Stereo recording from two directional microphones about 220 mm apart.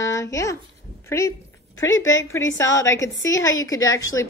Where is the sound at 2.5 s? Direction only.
15° left (ahead or behind).